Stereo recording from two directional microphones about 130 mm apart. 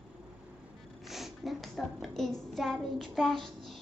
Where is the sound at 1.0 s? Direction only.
Centre (ahead or behind).